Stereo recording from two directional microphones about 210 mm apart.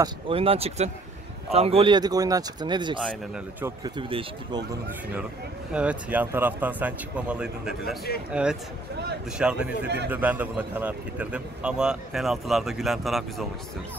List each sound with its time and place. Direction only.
0.0 s speech: 25° right (ahead or behind)
5.7 s a man's voice: 5° right (ahead or behind)